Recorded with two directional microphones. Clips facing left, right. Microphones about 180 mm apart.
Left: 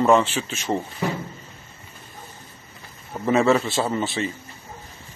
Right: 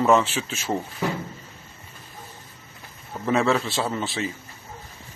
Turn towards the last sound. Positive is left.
turn(degrees=0)  # may be behind; listen again after turning